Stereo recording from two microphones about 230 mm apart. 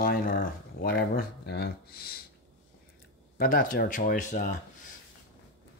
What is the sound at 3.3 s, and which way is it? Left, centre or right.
Speech, left.